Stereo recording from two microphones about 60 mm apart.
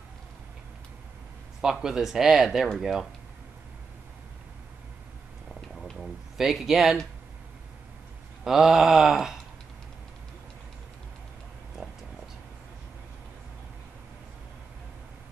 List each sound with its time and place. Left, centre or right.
1.6 s speech: centre
6.3 s speech: centre
8.5 s speech: centre